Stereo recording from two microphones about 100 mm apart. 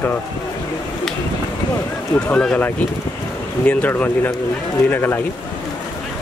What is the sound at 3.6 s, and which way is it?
Speech, 15° left (ahead or behind).